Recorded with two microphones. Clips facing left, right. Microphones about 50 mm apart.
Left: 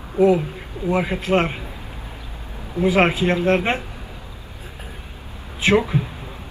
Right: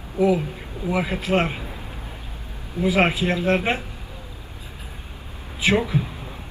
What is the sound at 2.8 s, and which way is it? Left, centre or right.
Speech, left.